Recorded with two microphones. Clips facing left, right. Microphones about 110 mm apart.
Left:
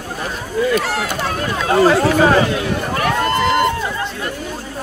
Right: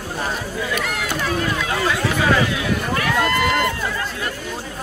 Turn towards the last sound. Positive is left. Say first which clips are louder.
# left 3 dB
turn(degrees=30)  # may be behind; listen again after turning